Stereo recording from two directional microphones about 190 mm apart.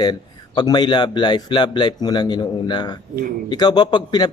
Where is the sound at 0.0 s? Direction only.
20° left (ahead or behind).